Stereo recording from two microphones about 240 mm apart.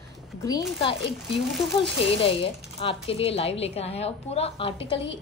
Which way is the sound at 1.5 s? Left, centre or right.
Centre.